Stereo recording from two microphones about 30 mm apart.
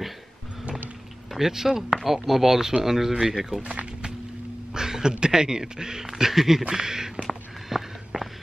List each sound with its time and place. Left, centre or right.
1.3 s speech: centre
4.7 s a sound: right
5.2 s a man's voice: right
7.2 s walk: centre